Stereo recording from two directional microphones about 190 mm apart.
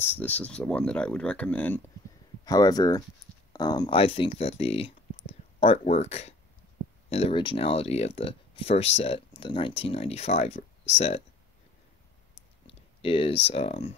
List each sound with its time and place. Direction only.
0.0 s speech: 10° left (ahead or behind)
2.4 s speech: 20° left (ahead or behind)
12.6 s speech: 30° left (ahead or behind)